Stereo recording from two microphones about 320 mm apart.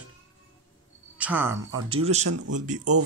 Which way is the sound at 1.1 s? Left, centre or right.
Centre.